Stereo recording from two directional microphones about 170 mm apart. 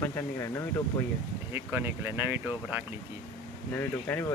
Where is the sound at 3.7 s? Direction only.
10° left (ahead or behind).